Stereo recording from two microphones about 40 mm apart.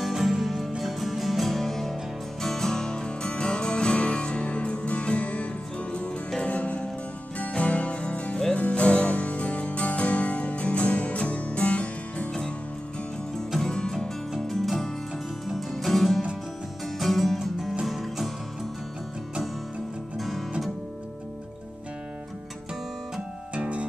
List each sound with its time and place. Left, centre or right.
0.0 s music: centre; by 12.3 s left
13.7 s music: centre
14.5 s music: centre
20.2 s music: centre